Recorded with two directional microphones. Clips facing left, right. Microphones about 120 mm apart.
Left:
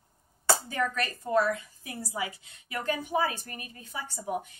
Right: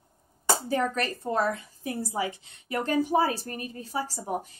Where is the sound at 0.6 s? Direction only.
40° right (ahead or behind).